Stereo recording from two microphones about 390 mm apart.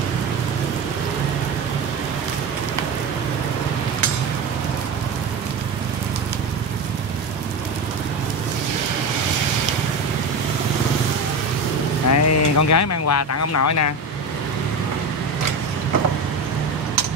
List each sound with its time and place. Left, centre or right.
12.1 s speech: left